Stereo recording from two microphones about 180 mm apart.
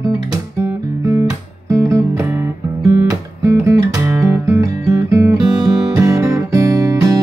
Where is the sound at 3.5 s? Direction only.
15° right (ahead or behind).